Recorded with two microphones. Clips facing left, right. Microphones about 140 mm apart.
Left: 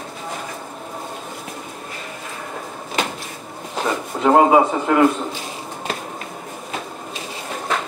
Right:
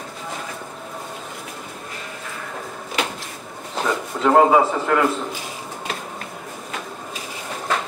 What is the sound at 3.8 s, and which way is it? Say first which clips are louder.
Speech: left 1 dB; 20° left (ahead or behind).